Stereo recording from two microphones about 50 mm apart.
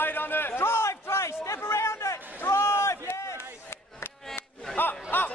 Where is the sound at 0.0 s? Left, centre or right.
Left.